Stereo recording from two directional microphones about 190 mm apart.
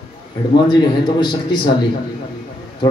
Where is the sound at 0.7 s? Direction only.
25° left (ahead or behind).